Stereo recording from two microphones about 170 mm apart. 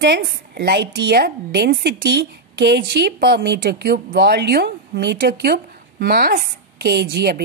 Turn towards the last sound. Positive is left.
turn(degrees=-70)  # may be behind; listen again after turning